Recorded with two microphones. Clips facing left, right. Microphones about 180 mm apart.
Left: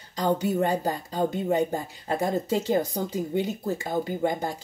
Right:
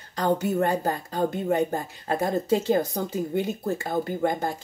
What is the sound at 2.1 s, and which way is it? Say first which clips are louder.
Speech: right 2 dB; 15° left (ahead or behind).